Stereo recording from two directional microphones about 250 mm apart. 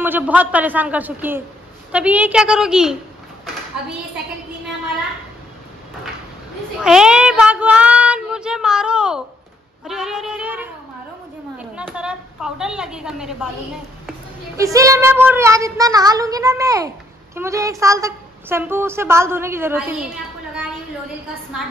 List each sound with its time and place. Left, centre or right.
0.0 s a woman's voice: centre
6.8 s child singing: centre
9.8 s a woman's voice: centre
14.6 s a woman's voice: centre